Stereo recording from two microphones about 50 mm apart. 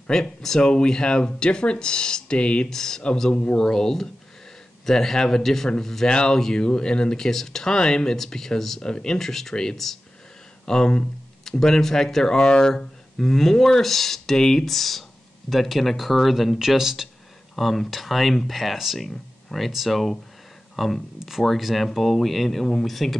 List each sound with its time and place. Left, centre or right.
0.1 s speech: centre